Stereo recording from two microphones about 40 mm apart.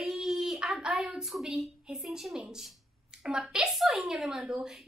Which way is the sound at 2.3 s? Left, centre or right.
Centre.